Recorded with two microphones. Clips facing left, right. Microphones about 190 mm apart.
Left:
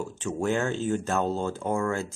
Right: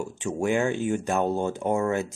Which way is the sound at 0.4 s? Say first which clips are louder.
Right 2 dB; 15° right (ahead or behind).